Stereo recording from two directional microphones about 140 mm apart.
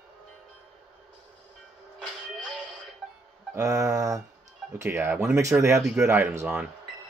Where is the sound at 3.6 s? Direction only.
20° right (ahead or behind); by 6.6 s 5° right (ahead or behind).